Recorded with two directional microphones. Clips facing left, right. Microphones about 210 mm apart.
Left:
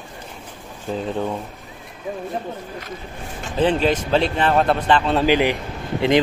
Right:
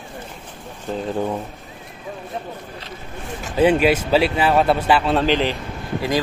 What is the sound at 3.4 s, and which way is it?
A man's voice, 10° right (ahead or behind).